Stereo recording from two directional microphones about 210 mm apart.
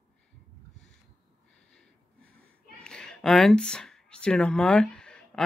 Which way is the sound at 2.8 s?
5° left (ahead or behind).